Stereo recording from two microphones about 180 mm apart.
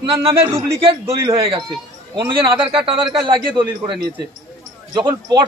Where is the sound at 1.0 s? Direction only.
15° right (ahead or behind).